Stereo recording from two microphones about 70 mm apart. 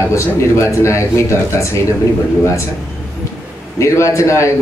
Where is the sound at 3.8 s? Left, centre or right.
Left.